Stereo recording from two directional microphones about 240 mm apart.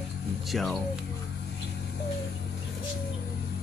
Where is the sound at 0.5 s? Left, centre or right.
Centre.